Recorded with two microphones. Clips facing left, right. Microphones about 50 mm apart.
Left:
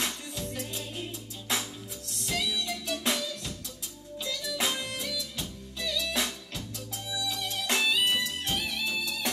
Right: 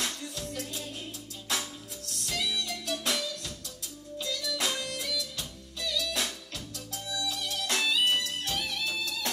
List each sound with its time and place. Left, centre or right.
0.0 s music: left
2.2 s music: left
7.3 s music: left